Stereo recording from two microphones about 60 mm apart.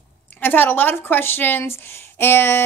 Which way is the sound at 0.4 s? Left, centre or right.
Left.